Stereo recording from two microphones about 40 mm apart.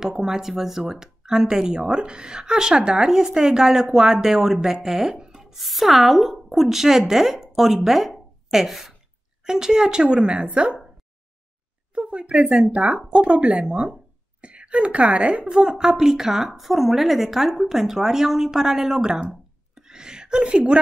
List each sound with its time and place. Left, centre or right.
0.0 s a woman's voice: centre; by 10.8 s right
11.9 s a sound: right
12.8 s a woman's voice: centre
13.1 s a woman's voice: right
15.5 s speech: centre
19.7 s a sound: centre
20.5 s a woman's voice: right